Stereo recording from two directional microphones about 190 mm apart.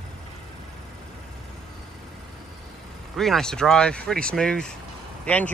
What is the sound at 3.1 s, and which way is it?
Speech, centre (ahead or behind).